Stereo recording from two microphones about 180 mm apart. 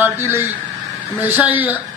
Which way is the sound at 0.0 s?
15° right (ahead or behind).